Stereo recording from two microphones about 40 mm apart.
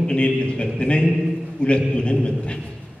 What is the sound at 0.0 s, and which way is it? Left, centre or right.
A woman's voice, left.